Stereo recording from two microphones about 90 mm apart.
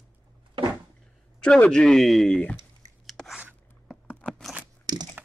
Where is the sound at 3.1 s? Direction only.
Centre (ahead or behind).